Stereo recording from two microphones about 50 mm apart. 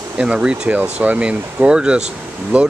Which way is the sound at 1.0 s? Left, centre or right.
Right.